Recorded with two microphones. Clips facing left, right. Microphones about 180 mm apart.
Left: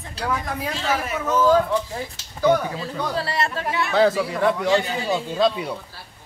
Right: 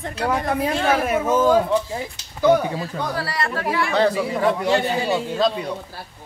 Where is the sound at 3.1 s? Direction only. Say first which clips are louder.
Left 1 dB; 25° left (ahead or behind).